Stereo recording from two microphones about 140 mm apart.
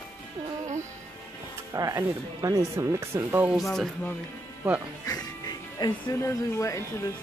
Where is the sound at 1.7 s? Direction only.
25° right (ahead or behind).